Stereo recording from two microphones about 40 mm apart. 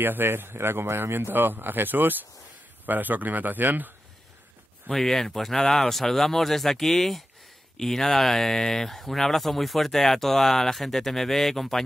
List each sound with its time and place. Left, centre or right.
0.0 s speech: right
4.9 s speech: centre